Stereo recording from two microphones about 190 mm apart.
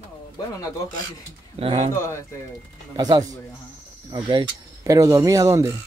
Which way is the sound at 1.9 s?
15° left (ahead or behind).